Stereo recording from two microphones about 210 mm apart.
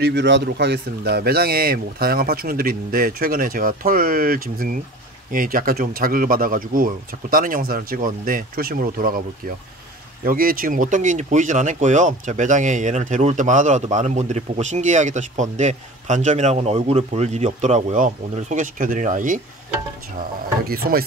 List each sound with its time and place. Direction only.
0.0 s speech: 55° right (ahead or behind)
10.2 s speech: 45° right (ahead or behind)
20.6 s speech: 45° right (ahead or behind)